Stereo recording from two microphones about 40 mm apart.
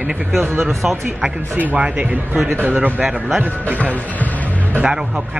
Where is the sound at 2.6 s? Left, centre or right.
Right.